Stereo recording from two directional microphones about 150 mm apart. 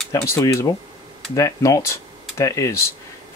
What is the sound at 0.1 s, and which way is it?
Speech, 20° left (ahead or behind).